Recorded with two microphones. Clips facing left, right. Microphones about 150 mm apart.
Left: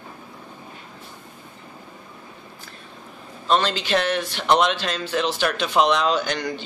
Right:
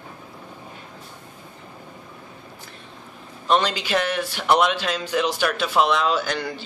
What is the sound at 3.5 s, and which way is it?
A man's voice, 15° right (ahead or behind).